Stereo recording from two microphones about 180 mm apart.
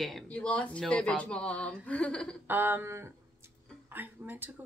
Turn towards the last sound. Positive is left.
turn(degrees=-10)  # may be behind; listen again after turning